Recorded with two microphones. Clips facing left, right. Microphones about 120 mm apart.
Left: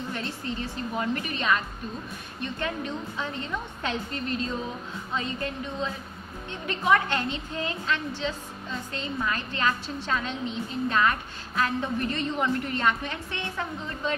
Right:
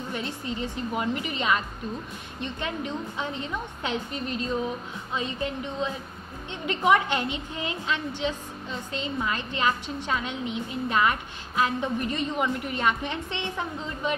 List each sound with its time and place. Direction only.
0.1 s a woman's voice: 15° right (ahead or behind)